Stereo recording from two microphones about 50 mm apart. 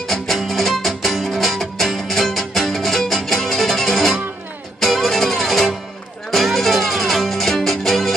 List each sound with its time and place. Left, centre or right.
0.1 s music: centre